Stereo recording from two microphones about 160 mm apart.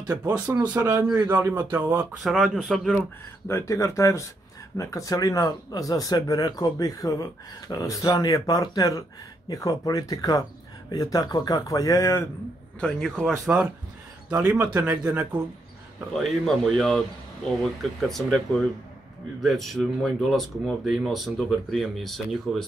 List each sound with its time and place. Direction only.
0.0 s speech: 25° right (ahead or behind); by 3.0 s centre (ahead or behind)
3.4 s speech: 15° left (ahead or behind)
12.8 s speech: 5° left (ahead or behind)
16.1 s speech: centre (ahead or behind)